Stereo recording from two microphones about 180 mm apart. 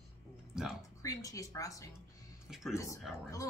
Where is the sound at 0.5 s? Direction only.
5° right (ahead or behind).